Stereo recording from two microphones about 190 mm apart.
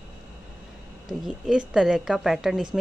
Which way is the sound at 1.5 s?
5° right (ahead or behind).